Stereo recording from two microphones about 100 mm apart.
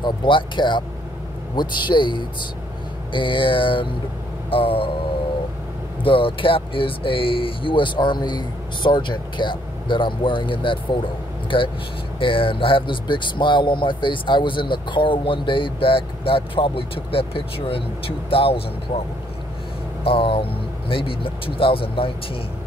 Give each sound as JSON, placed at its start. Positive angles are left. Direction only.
{"t": 0.0, "sound": "speech", "side_deg": 55}
{"t": 6.0, "sound": "speech", "side_deg": 60}
{"t": 20.1, "sound": "speech", "side_deg": 60}